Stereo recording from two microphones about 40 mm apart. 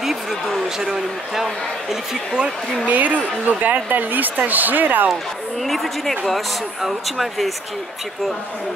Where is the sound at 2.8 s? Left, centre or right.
Right.